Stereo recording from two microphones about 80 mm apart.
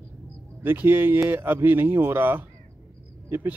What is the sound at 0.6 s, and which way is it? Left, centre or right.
Speech, right.